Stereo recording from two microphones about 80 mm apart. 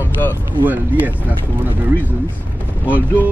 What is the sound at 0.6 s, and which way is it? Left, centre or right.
Speech, right.